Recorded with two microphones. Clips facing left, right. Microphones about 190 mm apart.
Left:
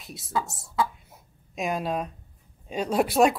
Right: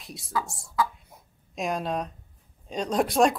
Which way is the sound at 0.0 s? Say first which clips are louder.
Left 1 dB; centre (ahead or behind).